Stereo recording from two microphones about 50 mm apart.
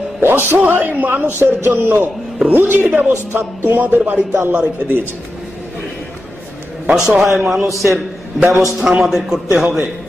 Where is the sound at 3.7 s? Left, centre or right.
Right.